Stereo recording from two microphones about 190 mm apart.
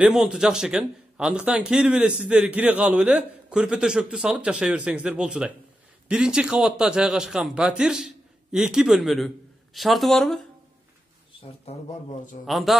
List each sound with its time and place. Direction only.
0.0 s a man's voice: 5° right (ahead or behind)
11.6 s speech: 35° left (ahead or behind)
12.4 s a man's voice: centre (ahead or behind)